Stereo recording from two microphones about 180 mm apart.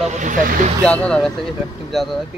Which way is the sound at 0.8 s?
5° left (ahead or behind).